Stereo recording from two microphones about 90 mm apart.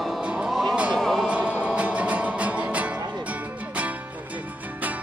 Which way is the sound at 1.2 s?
15° right (ahead or behind).